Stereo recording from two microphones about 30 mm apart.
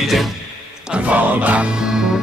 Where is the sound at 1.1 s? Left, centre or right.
Right.